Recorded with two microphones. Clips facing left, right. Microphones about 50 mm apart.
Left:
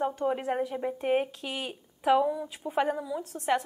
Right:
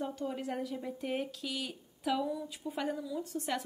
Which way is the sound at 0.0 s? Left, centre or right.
Left.